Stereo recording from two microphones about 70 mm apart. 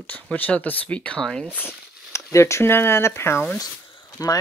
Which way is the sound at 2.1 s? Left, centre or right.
Left.